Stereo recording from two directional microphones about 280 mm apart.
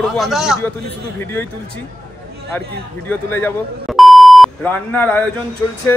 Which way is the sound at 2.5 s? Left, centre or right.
Centre.